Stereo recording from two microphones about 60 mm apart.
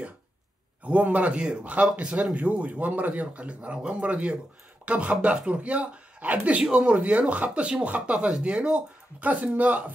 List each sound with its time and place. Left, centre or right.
0.8 s speech: right